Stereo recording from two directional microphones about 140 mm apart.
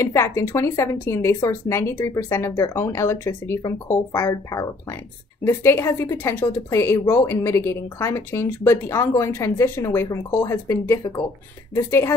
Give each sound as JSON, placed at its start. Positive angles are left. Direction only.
{"t": 0.0, "sound": "speech", "side_deg": 20}